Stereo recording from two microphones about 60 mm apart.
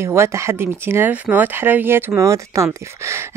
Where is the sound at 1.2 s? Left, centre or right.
Right.